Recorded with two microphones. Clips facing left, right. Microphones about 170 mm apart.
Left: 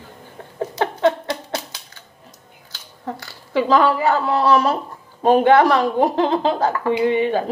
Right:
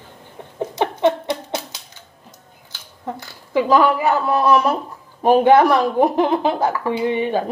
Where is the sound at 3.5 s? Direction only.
15° right (ahead or behind).